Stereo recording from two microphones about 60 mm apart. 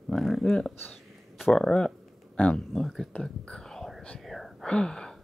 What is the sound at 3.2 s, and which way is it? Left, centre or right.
Whispering, centre.